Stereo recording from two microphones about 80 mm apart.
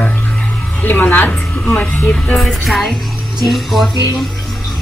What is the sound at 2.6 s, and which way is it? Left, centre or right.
Speech, centre.